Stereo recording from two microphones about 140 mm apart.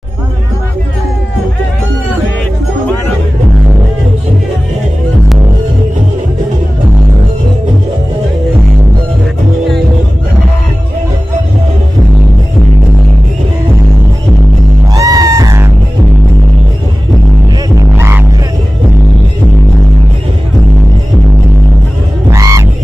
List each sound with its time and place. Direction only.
15.0 s music: 25° right (ahead or behind)
17.9 s music: 20° right (ahead or behind)
22.3 s music: 20° right (ahead or behind)